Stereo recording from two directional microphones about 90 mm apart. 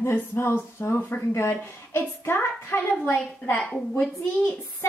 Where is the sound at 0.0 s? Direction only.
25° left (ahead or behind).